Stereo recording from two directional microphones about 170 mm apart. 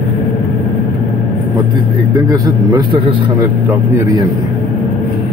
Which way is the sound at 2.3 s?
25° right (ahead or behind).